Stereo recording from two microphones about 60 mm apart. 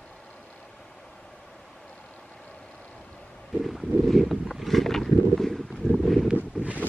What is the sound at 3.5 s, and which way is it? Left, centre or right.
Boat, centre.